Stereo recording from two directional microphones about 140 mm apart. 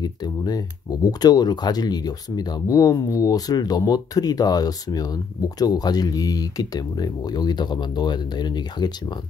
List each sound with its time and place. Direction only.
0.0 s speech: 30° left (ahead or behind)